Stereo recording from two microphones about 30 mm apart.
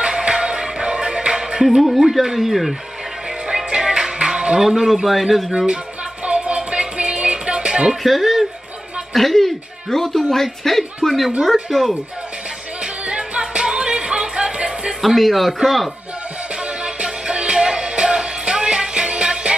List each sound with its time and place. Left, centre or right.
0.0 s music: right
1.8 s speech: centre
3.7 s music: right
4.6 s speech: centre
6.2 s music: right
8.0 s speech: centre
9.1 s a woman's voice: centre
12.8 s music: right
15.0 s speech: centre
16.8 s music: right